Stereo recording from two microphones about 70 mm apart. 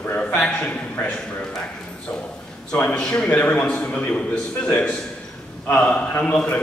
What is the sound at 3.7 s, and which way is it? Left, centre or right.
A man's voice, centre.